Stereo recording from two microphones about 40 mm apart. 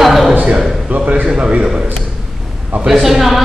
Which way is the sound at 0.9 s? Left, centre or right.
Right.